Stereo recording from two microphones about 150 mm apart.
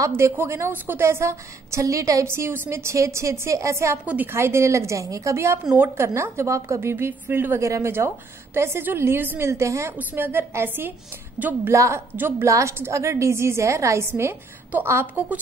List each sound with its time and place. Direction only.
0.0 s a woman's voice: 15° right (ahead or behind)